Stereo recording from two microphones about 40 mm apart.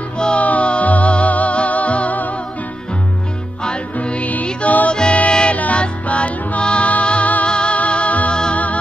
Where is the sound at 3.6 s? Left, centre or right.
Left.